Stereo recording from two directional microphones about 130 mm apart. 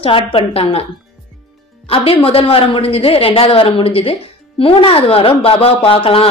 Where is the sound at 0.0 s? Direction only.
40° left (ahead or behind).